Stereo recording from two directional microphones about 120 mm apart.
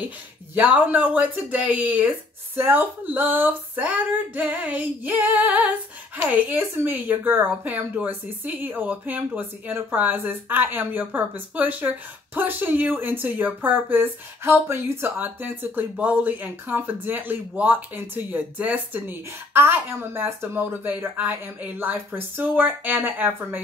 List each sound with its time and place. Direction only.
0.6 s speech: 15° right (ahead or behind)